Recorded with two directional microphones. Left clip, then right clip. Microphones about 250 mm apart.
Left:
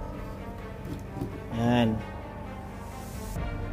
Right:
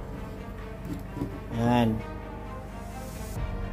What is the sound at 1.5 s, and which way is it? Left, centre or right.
Speech, centre.